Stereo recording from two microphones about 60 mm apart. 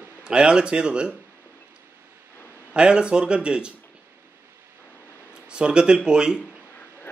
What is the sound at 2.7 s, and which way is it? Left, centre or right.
Speech, centre.